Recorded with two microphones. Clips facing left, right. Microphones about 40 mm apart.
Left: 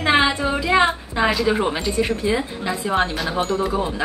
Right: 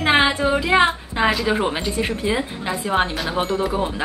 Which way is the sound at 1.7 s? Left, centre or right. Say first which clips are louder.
Left 2 dB; centre.